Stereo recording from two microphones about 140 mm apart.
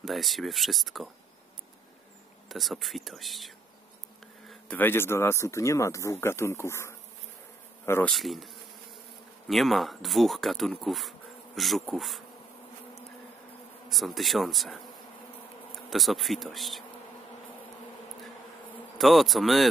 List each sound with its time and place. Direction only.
0.0 s speech: centre (ahead or behind)
2.5 s speech: centre (ahead or behind)
4.5 s speech: 10° left (ahead or behind)
8.1 s speech: centre (ahead or behind)
9.5 s speech: centre (ahead or behind)
13.8 s speech: centre (ahead or behind)
15.9 s speech: centre (ahead or behind)
18.9 s speech: centre (ahead or behind)